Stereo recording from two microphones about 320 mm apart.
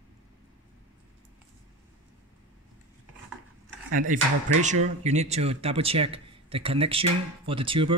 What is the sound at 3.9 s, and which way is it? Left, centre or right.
Speech, right.